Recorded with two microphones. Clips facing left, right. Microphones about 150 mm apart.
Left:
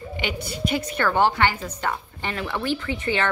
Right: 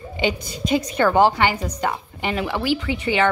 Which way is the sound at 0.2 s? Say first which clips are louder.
Right 5 dB; 20° right (ahead or behind).